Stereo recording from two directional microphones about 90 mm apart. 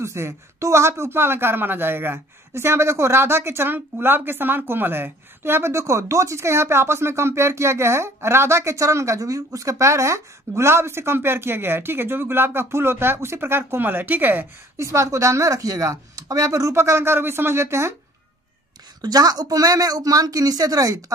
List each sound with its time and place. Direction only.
0.0 s speech: 30° right (ahead or behind)
14.8 s speech: 35° right (ahead or behind)
18.9 s speech: 45° right (ahead or behind)